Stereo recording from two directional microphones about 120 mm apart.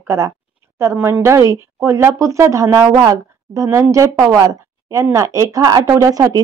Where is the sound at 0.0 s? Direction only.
25° right (ahead or behind).